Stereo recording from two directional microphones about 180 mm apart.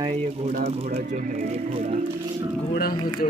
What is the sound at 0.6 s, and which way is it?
Speech, 35° right (ahead or behind).